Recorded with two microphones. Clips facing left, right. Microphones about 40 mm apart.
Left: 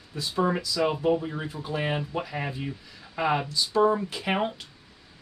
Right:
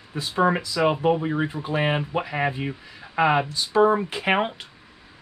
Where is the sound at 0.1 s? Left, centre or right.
Right.